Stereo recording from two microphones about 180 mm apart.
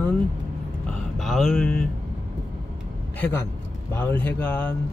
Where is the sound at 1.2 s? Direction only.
Centre (ahead or behind).